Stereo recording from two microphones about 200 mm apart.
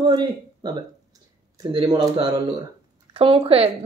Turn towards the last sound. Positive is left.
turn(degrees=-25)  # may be behind; listen again after turning